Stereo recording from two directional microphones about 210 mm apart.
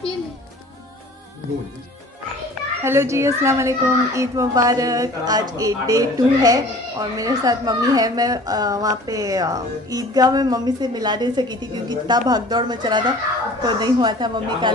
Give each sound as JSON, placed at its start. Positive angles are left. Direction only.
{"t": 2.8, "sound": "a child's voice", "side_deg": -10}